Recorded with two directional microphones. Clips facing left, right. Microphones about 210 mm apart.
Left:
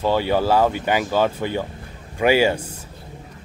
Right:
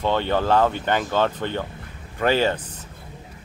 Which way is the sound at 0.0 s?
10° left (ahead or behind).